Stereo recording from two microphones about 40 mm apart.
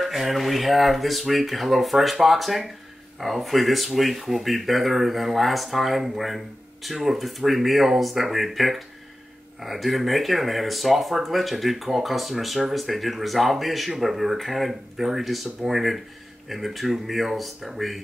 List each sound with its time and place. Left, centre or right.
0.0 s speech: centre